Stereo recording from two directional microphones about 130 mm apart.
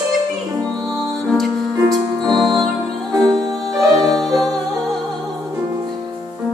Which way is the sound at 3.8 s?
Centre (ahead or behind).